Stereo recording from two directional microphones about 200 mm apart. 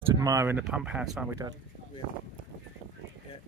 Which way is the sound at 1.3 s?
15° right (ahead or behind).